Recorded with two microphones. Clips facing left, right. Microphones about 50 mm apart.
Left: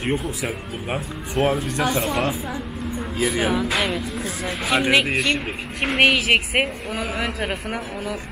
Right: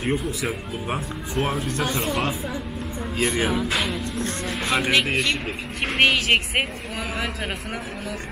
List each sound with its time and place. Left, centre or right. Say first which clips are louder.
1.3 s speech: left 4 dB; centre